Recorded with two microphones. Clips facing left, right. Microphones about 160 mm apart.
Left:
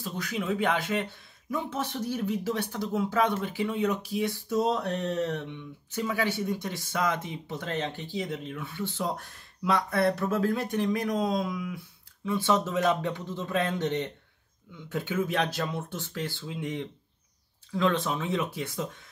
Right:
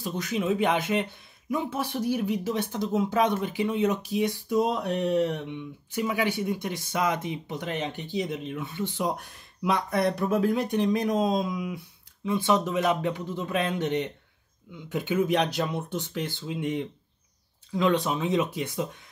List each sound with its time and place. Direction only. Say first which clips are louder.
0.0 s speech: right 4 dB; 20° right (ahead or behind)